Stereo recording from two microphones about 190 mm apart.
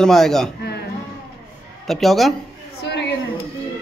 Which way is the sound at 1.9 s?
Centre (ahead or behind).